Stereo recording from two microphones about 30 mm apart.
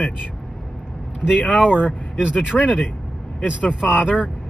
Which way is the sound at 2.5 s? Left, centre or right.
Centre.